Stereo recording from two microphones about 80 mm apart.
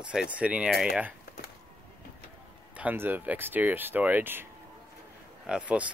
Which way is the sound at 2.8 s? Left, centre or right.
Right.